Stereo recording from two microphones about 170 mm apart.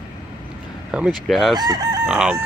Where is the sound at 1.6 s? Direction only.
20° right (ahead or behind).